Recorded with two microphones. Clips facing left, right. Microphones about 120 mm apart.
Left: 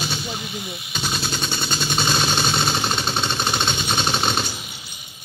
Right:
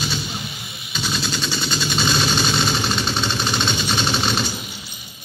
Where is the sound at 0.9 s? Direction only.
50° left (ahead or behind).